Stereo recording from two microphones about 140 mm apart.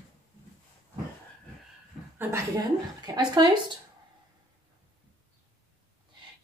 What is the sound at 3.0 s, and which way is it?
Speech, 30° right (ahead or behind).